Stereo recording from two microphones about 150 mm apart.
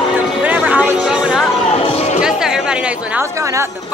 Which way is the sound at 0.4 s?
10° right (ahead or behind).